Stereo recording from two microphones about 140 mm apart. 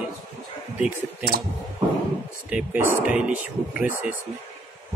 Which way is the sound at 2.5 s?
15° right (ahead or behind).